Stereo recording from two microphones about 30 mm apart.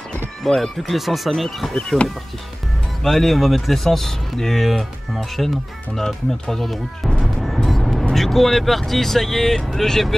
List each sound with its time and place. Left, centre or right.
0.5 s speech: centre
1.3 s speech: centre
1.7 s speech: left
3.0 s speech: centre
4.6 s speech: centre
6.5 s speech: centre
7.4 s music: centre
8.1 s speech: centre